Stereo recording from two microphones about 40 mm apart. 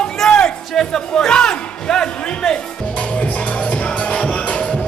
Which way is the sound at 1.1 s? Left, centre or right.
Centre.